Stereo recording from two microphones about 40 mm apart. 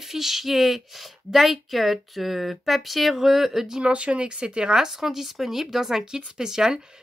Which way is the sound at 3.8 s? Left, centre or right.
Right.